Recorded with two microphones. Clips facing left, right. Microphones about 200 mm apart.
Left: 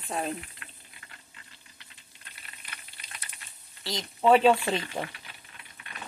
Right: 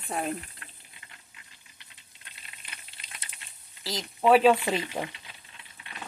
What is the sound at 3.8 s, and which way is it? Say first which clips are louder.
Speech: even; 5° right (ahead or behind).